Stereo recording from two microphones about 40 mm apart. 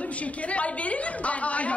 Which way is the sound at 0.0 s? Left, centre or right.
Left.